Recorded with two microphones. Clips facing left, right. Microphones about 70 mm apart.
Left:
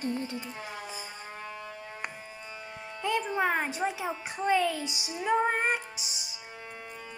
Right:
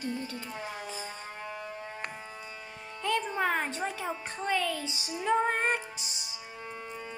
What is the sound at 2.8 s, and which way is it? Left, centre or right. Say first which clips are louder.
A child's voice: left 1 dB; centre.